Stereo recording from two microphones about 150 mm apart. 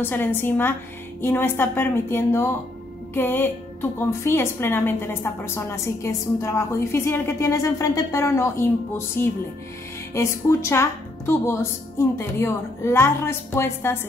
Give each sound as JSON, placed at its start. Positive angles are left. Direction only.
{"t": 0.0, "sound": "a woman's voice", "side_deg": 15}